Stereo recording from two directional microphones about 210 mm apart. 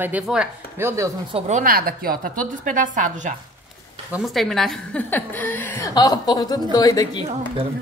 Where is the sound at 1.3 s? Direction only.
30° right (ahead or behind).